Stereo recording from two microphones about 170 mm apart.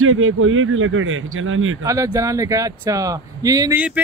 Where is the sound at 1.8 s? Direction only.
20° right (ahead or behind).